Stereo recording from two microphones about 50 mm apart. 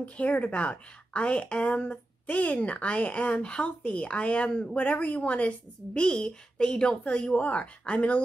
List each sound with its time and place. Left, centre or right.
0.0 s a woman's voice: left
5.9 s a woman's voice: centre
7.3 s a woman's voice: left